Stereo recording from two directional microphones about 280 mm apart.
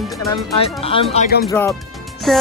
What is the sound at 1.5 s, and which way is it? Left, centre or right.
Speech, centre.